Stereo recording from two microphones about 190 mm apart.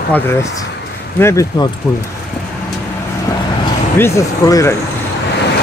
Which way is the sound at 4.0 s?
15° left (ahead or behind).